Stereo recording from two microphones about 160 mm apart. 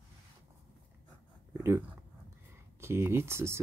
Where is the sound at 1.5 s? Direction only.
15° right (ahead or behind).